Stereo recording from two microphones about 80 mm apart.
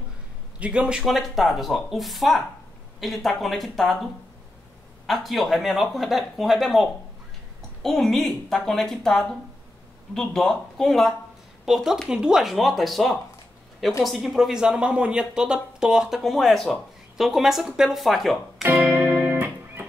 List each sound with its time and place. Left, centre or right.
0.6 s speech: centre
1.0 s speech: centre
11.6 s speech: centre
18.6 s music: right